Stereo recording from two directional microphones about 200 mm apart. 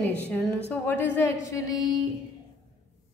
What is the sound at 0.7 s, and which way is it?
A woman's voice, 10° left (ahead or behind).